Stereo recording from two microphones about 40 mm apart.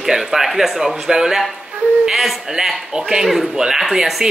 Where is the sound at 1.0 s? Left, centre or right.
Centre.